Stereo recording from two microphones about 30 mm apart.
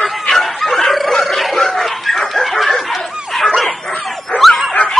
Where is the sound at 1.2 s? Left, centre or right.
Centre.